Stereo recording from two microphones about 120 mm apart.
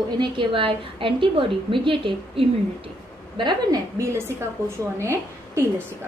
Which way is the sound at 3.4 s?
35° right (ahead or behind).